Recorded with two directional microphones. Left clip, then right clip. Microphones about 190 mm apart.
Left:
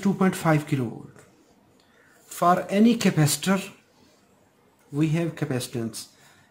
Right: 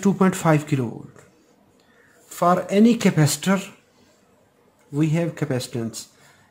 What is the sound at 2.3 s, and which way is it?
Speech, 20° right (ahead or behind).